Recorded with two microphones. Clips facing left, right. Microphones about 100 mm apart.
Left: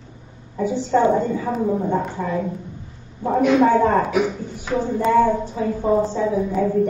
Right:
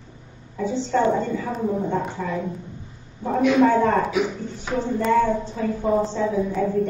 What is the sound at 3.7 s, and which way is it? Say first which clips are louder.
Speech: left 2 dB; 15° left (ahead or behind).